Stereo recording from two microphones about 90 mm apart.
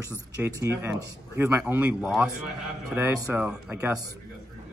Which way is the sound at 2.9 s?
25° right (ahead or behind).